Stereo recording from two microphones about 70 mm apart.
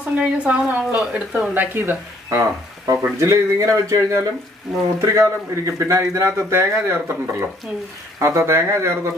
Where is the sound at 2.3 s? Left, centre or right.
Right.